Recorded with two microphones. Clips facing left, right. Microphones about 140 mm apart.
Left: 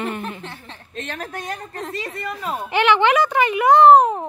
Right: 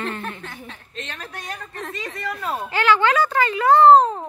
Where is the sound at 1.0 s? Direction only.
50° left (ahead or behind).